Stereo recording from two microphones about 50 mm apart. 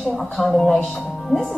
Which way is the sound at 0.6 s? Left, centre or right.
Left.